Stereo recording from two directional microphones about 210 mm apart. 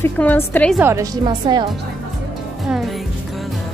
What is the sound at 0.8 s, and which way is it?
Speech, 10° right (ahead or behind).